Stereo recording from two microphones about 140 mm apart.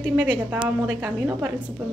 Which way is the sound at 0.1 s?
10° right (ahead or behind).